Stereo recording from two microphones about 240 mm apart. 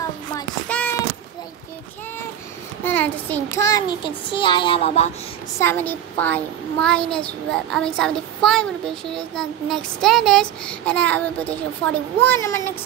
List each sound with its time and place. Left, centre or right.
0.7 s a sound: centre
2.8 s a child's voice: centre; by 5.1 s left
5.6 s speech: centre